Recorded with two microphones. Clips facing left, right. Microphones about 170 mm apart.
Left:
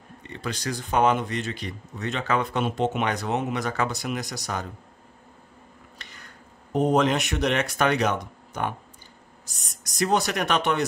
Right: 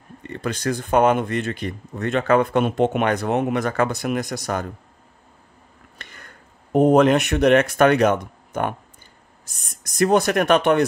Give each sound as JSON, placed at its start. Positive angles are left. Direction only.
{"t": 0.2, "sound": "speech", "side_deg": -50}
{"t": 5.9, "sound": "speech", "side_deg": -55}